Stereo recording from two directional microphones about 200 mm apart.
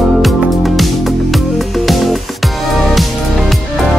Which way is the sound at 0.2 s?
Centre (ahead or behind).